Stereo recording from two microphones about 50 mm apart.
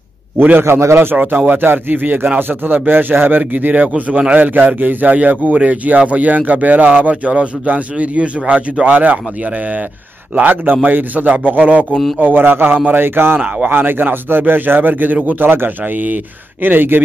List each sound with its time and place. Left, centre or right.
0.4 s a man's voice: right
0.7 s speech: right
1.1 s a man's voice: right
10.3 s speech: right